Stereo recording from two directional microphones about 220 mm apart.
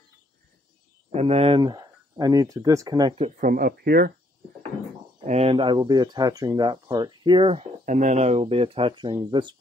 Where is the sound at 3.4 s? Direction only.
40° right (ahead or behind).